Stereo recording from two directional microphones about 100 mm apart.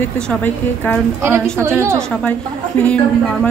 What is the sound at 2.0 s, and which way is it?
A woman's voice, 10° left (ahead or behind).